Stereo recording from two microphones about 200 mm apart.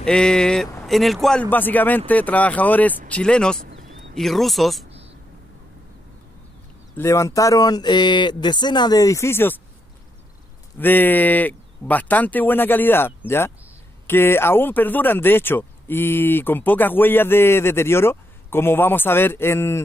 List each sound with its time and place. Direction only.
0.0 s speech: 5° left (ahead or behind)
7.0 s speech: 15° left (ahead or behind)
10.8 s speech: 10° left (ahead or behind)